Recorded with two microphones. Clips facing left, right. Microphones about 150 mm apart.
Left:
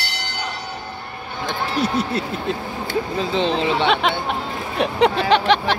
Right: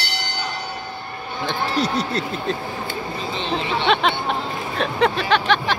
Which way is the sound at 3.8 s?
5° left (ahead or behind).